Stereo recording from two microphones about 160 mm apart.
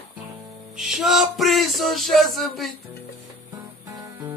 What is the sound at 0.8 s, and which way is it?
Music, centre (ahead or behind).